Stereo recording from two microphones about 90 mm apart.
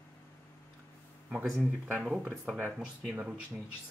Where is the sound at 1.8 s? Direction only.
15° right (ahead or behind).